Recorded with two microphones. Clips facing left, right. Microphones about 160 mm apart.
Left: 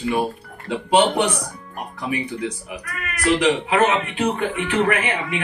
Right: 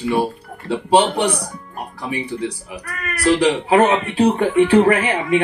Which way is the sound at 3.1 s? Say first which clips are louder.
Right 3 dB; 30° right (ahead or behind).